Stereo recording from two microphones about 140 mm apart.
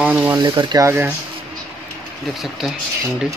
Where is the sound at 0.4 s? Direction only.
30° right (ahead or behind).